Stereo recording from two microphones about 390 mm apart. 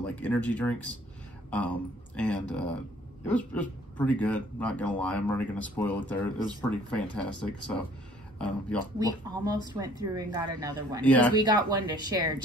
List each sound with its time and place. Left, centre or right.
0.0 s speech: centre
9.3 s speech: centre
11.0 s speech: centre
11.3 s speech: centre